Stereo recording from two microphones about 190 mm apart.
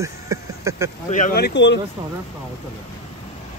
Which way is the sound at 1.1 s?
40° left (ahead or behind).